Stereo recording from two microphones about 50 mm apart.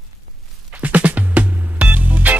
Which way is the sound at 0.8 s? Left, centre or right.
Right.